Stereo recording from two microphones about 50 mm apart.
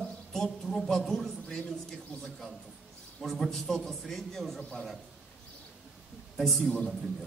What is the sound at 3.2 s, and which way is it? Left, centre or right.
A man's voice, centre.